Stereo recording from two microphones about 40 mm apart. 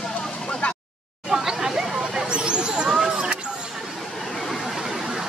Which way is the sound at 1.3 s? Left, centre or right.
Centre.